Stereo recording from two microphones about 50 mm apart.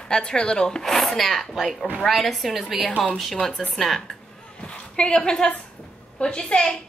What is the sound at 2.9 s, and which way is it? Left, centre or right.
Speech, centre.